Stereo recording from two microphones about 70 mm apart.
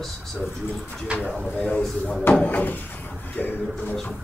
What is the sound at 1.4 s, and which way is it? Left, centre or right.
Speech, left.